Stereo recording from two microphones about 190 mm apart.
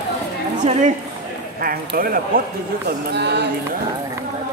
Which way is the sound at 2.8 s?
60° right (ahead or behind).